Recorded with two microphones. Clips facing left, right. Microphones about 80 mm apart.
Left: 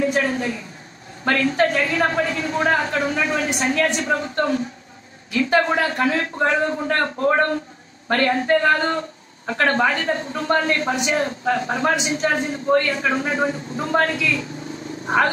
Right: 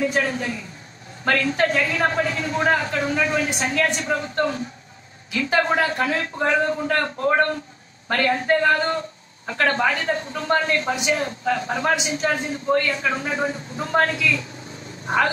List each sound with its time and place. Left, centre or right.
0.2 s a man's voice: left
5.8 s a man's voice: left